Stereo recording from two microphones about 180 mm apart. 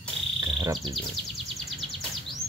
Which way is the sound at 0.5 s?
25° right (ahead or behind).